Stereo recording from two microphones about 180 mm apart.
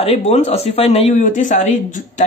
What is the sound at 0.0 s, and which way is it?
Speech, 40° left (ahead or behind).